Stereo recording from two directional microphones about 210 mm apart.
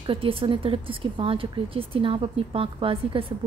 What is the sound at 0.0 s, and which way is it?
A woman's voice, 25° right (ahead or behind).